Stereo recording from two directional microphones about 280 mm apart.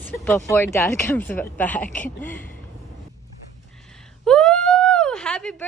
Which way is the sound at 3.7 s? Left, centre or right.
Centre.